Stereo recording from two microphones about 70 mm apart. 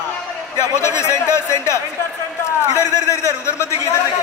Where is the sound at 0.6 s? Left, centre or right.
Left.